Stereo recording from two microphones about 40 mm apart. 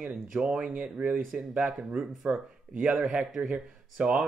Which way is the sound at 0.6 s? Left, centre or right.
Right.